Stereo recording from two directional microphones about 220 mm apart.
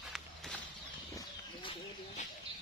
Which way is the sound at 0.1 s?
Centre (ahead or behind).